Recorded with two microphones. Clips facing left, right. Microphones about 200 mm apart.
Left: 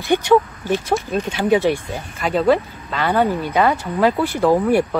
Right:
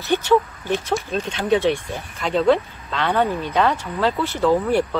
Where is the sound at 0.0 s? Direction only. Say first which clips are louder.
Left 3 dB; 15° left (ahead or behind).